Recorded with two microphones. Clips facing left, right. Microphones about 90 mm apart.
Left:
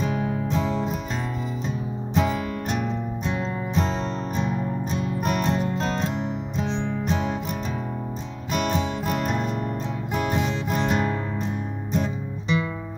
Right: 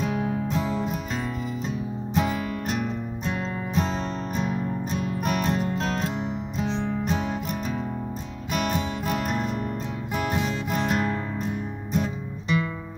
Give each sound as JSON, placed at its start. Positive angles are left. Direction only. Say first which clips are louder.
{"t": 0.0, "sound": "music", "louder": "left 1 dB", "side_deg": 0}
{"t": 2.1, "sound": "music", "louder": "left 2 dB", "side_deg": 0}
{"t": 8.5, "sound": "music", "louder": "left 2 dB", "side_deg": 0}